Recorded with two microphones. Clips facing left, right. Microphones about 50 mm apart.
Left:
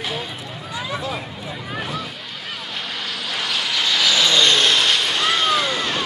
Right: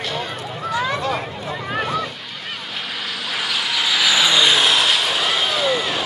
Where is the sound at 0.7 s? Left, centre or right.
Right.